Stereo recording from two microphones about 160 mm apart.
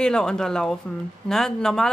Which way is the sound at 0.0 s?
5° left (ahead or behind).